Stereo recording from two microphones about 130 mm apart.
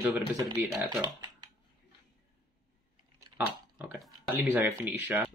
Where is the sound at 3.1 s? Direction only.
15° right (ahead or behind).